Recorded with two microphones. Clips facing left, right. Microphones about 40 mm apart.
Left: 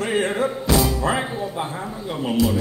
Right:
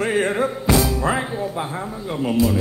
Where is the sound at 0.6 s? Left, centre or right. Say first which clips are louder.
Right 1 dB; right.